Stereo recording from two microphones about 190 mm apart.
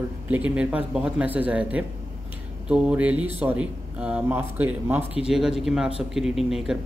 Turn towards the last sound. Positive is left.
turn(degrees=0)  # may be behind; listen again after turning